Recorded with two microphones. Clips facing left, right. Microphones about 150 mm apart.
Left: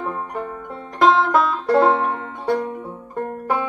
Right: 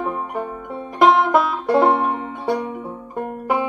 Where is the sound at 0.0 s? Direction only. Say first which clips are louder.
Right 2 dB; 15° right (ahead or behind).